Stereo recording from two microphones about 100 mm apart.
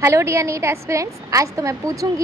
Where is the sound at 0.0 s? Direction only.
30° right (ahead or behind).